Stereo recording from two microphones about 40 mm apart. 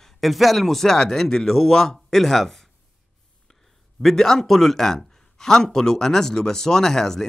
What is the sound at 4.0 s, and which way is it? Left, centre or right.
A man's voice, centre.